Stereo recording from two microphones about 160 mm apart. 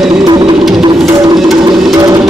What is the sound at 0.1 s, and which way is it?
Music, 30° right (ahead or behind).